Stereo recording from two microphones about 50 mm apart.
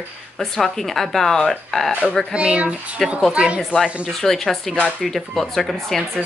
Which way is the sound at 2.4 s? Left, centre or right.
Right.